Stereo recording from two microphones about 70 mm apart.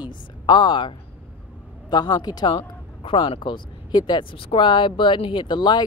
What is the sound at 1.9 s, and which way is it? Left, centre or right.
Speech, left.